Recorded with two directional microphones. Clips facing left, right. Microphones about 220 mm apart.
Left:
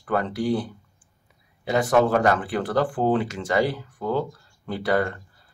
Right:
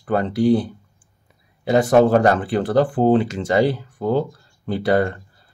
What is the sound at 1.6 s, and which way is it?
Speech, 30° right (ahead or behind).